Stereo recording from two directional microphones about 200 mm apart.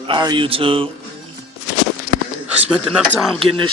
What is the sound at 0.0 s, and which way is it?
Speech, 25° right (ahead or behind).